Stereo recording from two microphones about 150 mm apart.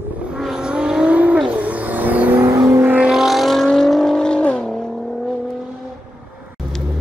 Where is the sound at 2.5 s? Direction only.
20° right (ahead or behind).